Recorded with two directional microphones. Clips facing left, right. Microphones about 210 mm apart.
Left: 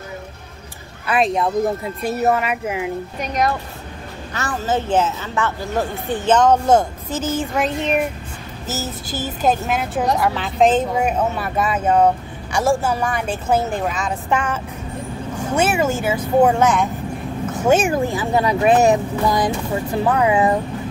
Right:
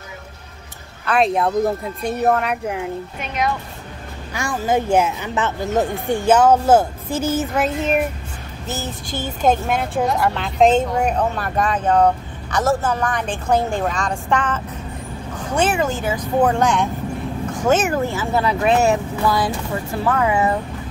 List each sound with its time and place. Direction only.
1.0 s a woman's voice: centre (ahead or behind)
3.2 s speech: 40° left (ahead or behind)
4.3 s a woman's voice: 10° right (ahead or behind); by 20.5 s 15° left (ahead or behind)